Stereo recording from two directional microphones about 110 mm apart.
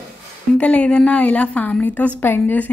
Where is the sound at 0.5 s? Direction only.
10° left (ahead or behind).